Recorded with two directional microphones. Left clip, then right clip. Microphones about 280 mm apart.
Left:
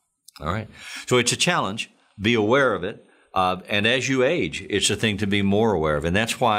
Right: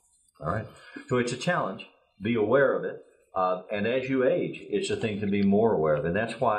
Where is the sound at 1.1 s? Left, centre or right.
Left.